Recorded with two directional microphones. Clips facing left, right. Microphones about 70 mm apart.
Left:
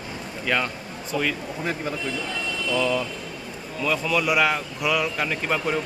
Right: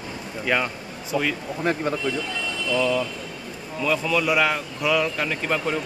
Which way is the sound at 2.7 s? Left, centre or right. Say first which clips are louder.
Right 2 dB; centre.